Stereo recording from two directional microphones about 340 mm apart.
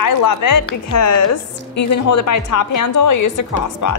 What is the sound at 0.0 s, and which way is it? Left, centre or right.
A woman's voice, left.